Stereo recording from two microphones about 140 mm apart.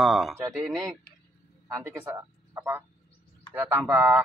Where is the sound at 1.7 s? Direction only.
15° right (ahead or behind).